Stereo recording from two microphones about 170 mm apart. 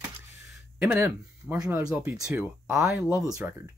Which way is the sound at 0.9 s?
15° right (ahead or behind).